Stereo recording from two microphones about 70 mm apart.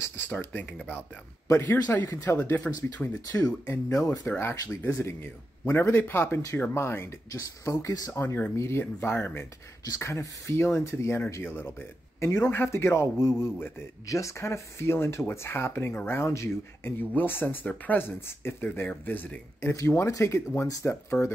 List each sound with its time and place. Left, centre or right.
0.0 s a sound: left
0.3 s speech: left
2.3 s speech: left
2.7 s speech: centre
3.3 s speech: left
4.3 s speech: left
8.1 s speech: left
14.0 s speech: left
19.6 s speech: left